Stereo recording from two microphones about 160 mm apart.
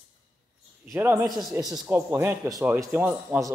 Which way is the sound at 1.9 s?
15° right (ahead or behind).